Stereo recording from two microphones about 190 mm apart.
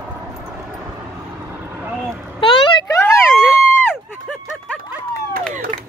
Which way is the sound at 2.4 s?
25° left (ahead or behind).